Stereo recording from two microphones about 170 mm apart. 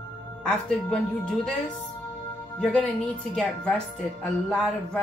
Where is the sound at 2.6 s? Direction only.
5° left (ahead or behind).